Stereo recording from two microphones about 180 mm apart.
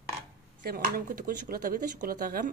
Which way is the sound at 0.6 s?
55° right (ahead or behind).